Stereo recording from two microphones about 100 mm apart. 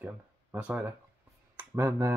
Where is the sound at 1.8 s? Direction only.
30° right (ahead or behind).